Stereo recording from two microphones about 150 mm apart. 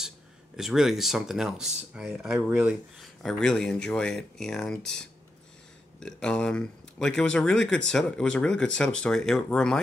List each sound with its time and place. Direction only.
0.6 s speech: centre (ahead or behind)